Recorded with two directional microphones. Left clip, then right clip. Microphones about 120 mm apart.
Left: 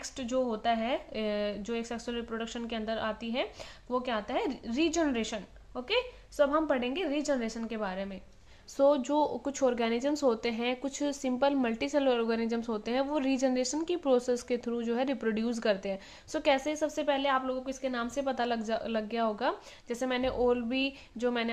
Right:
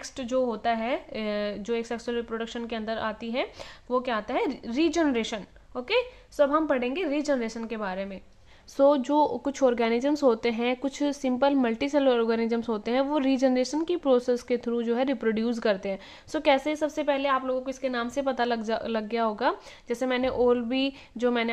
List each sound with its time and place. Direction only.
0.0 s a woman's voice: 40° right (ahead or behind)